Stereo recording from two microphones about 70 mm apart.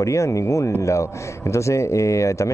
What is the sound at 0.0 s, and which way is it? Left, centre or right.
Speech, left.